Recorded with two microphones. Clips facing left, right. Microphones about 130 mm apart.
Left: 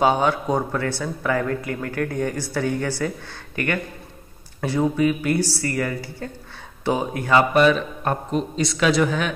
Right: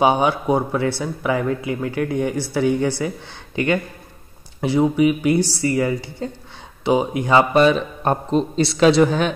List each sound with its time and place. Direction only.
0.0 s a man's voice: 15° right (ahead or behind)